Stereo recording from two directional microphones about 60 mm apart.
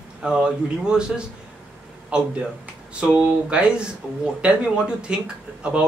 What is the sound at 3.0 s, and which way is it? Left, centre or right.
Speech, centre.